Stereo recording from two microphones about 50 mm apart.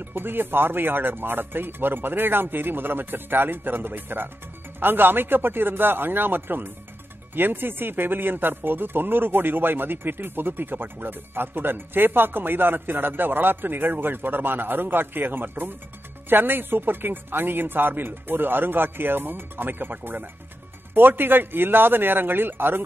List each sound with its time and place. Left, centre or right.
0.0 s speech: right